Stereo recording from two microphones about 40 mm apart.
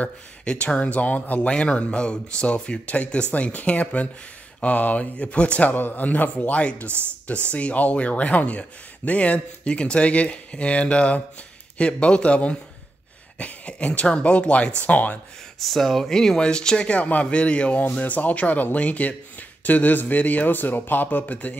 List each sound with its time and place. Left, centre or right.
0.0 s a man's voice: left
1.5 s a man's voice: left
5.7 s speech: left
6.4 s a man's voice: left
15.6 s a man's voice: centre; by 21.5 s left